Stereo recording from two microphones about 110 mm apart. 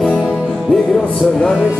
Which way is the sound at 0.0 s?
10° left (ahead or behind).